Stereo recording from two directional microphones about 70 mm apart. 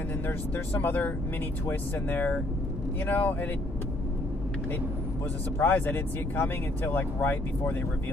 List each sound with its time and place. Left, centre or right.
0.3 s speech: left
5.6 s speech: left